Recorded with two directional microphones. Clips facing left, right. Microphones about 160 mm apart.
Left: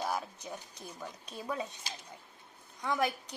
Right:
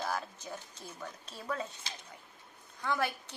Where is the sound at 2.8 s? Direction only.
15° left (ahead or behind).